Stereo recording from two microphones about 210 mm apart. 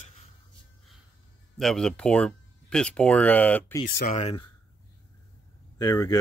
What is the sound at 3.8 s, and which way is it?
Speech, 40° left (ahead or behind).